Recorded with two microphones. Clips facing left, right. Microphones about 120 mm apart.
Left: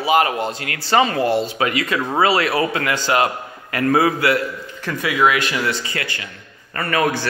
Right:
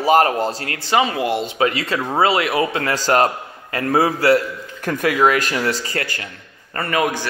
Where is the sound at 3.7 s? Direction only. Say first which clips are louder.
Left 1 dB; 30° right (ahead or behind).